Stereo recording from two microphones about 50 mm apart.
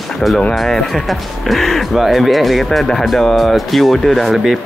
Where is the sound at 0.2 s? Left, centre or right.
Centre.